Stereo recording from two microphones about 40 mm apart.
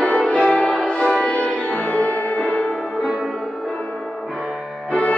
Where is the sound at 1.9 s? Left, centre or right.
Left.